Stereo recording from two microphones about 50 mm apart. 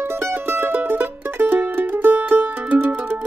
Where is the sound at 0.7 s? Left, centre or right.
Right.